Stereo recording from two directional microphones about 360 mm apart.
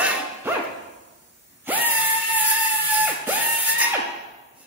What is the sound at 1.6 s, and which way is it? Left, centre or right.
Screaming, centre.